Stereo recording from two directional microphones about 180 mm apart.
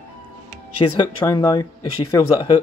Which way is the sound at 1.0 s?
25° left (ahead or behind).